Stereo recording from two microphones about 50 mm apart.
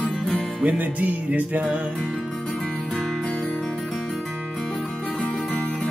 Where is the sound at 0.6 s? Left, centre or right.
Right.